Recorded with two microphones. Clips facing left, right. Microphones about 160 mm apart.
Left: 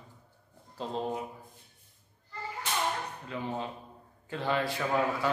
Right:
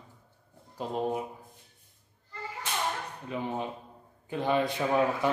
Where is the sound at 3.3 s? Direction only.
15° right (ahead or behind).